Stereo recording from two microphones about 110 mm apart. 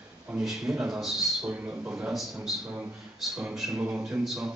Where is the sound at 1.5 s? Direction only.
15° right (ahead or behind).